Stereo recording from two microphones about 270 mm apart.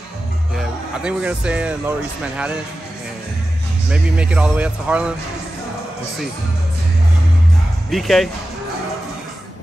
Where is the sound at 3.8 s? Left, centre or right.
Centre.